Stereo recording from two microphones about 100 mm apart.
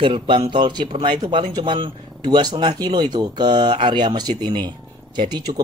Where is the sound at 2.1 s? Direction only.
45° right (ahead or behind).